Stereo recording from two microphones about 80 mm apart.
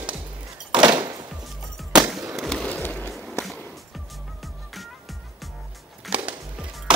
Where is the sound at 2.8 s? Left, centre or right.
Centre.